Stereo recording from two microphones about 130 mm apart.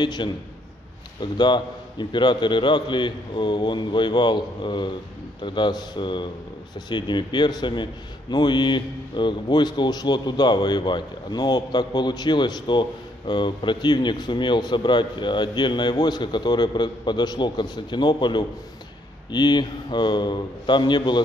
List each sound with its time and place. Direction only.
0.0 s a man's voice: 35° left (ahead or behind)